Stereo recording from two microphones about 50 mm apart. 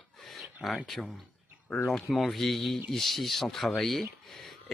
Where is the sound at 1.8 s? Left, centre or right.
Centre.